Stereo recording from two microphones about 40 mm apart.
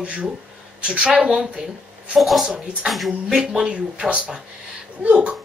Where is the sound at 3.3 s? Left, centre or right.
Centre.